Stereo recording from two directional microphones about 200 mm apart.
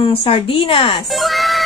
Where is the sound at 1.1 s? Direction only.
Centre (ahead or behind).